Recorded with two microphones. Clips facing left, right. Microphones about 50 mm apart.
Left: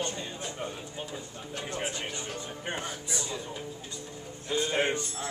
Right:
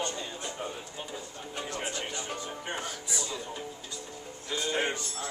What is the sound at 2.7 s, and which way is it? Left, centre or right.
Speech, left.